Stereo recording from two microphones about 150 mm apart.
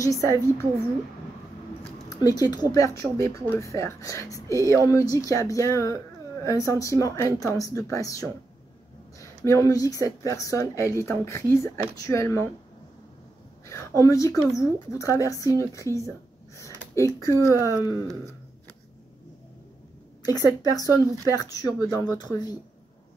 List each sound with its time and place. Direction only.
0.1 s a woman's voice: 20° left (ahead or behind)
2.0 s a woman's voice: 25° left (ahead or behind)
13.7 s a woman's voice: 20° left (ahead or behind)
16.5 s a sound: 20° left (ahead or behind)
20.2 s a woman's voice: 25° left (ahead or behind)